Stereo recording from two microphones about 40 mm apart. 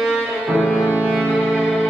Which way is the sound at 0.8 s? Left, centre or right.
Right.